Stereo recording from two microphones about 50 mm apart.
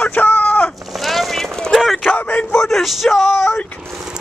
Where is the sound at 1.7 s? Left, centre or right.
Centre.